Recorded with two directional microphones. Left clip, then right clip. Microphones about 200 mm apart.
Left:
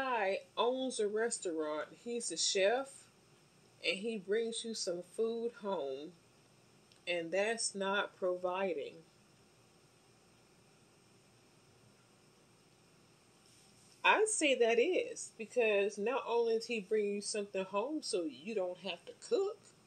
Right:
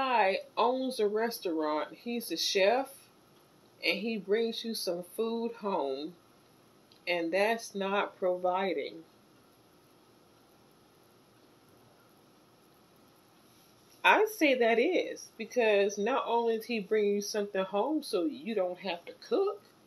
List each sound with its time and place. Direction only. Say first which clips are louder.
0.0 s a sound: right 7 dB; 25° left (ahead or behind)
0.9 s a woman's voice: right 5 dB; 30° left (ahead or behind)
3.8 s a woman's voice: right 5 dB; 25° left (ahead or behind)
7.1 s a woman's voice: right 6 dB; 30° left (ahead or behind)
14.0 s a woman's voice: right 5 dB; 20° left (ahead or behind)